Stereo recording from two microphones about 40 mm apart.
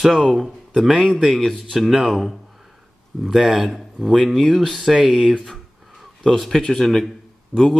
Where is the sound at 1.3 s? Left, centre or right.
Centre.